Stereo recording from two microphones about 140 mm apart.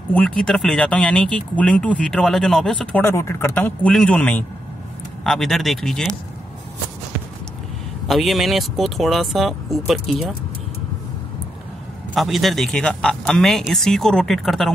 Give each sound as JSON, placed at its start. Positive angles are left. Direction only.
{"t": 0.1, "sound": "speech", "side_deg": 5}
{"t": 3.0, "sound": "speech", "side_deg": 20}
{"t": 8.1, "sound": "speech", "side_deg": 0}
{"t": 12.1, "sound": "speech", "side_deg": 0}